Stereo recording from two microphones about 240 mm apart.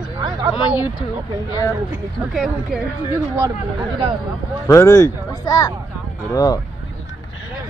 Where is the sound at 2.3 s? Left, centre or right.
Centre.